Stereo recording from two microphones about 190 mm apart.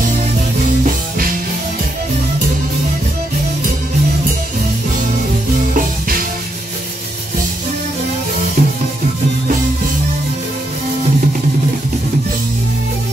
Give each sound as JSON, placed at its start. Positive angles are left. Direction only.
{"t": 8.6, "sound": "music", "side_deg": -40}